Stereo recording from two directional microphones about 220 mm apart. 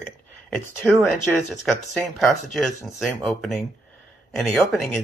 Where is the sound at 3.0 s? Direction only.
Centre (ahead or behind).